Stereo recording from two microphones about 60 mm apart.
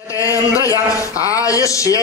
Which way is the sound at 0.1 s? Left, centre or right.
Left.